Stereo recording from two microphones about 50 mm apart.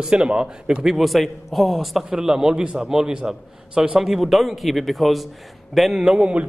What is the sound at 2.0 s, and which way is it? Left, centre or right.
A man's voice, centre.